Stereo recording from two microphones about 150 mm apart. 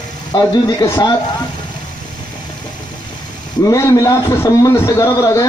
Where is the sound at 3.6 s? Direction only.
20° left (ahead or behind).